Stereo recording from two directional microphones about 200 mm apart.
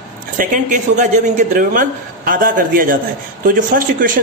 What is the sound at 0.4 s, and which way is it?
A man's voice, 40° right (ahead or behind).